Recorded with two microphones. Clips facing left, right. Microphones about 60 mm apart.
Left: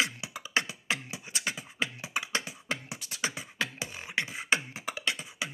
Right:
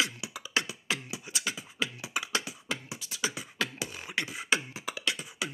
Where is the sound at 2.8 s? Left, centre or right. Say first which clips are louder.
Even; left.